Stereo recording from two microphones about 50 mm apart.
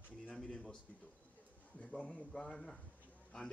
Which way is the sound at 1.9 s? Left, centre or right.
Left.